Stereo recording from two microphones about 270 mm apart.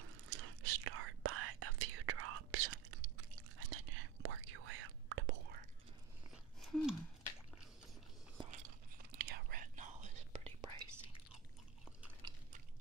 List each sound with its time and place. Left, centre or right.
0.3 s whispering: right
6.3 s a sound: centre
8.4 s whispering: right
11.3 s chewing: centre